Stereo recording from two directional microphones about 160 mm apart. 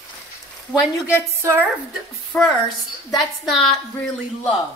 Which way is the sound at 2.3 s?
10° left (ahead or behind).